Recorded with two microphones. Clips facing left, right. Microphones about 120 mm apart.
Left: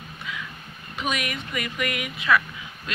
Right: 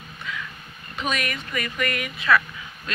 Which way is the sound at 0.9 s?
10° left (ahead or behind).